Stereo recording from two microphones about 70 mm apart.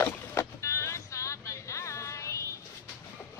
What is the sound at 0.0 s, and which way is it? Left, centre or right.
Boat, left.